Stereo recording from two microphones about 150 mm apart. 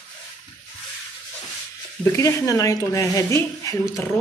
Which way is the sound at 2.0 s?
20° left (ahead or behind).